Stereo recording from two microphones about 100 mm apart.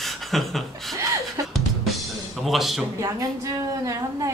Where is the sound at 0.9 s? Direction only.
35° right (ahead or behind).